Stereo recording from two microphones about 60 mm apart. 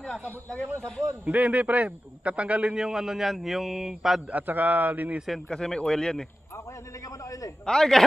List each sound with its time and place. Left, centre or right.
0.0 s a man's voice: centre
1.2 s a man's voice: right
2.8 s speech: centre
4.3 s a man's voice: right
5.5 s a man's voice: centre
7.6 s a man's voice: centre